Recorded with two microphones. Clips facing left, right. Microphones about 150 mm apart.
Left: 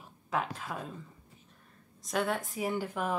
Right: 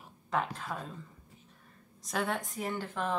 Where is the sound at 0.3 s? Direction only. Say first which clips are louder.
Even; 5° left (ahead or behind).